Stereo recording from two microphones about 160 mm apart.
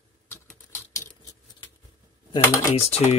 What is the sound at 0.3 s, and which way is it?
Typing, 15° left (ahead or behind).